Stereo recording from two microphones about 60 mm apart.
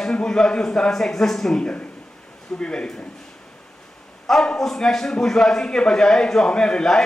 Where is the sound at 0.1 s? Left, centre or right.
Centre.